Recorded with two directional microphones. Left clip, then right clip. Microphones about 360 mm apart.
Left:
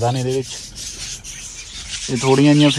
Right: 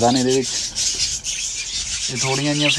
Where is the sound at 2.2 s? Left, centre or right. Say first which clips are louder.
Left 7 dB; centre.